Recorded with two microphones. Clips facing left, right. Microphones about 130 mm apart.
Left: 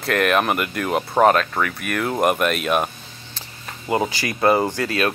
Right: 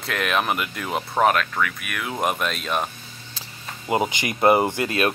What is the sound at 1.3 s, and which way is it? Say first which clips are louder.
Speech: left 3 dB; 35° left (ahead or behind).